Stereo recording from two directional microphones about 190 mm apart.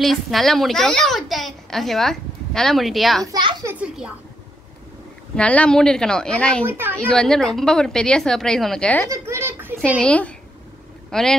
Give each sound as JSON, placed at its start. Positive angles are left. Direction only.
{"t": 0.0, "sound": "a child's voice", "side_deg": 0}
{"t": 3.3, "sound": "a child's voice", "side_deg": -20}
{"t": 3.8, "sound": "a sound", "side_deg": -5}
{"t": 5.3, "sound": "a child's voice", "side_deg": 5}
{"t": 6.6, "sound": "a woman's voice", "side_deg": -10}
{"t": 7.1, "sound": "a child's voice", "side_deg": 5}
{"t": 9.1, "sound": "a sound", "side_deg": -15}
{"t": 9.8, "sound": "a child's voice", "side_deg": 5}